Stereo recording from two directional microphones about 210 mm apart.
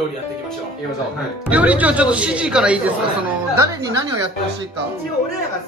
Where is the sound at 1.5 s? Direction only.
5° right (ahead or behind).